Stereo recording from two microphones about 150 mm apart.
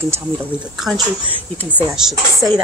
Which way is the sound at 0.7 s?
Centre (ahead or behind).